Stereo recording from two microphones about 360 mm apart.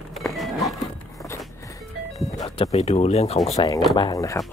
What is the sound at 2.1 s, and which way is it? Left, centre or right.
Speech, centre.